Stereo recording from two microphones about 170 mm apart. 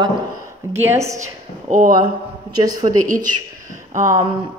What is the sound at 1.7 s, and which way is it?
Speech, 50° right (ahead or behind).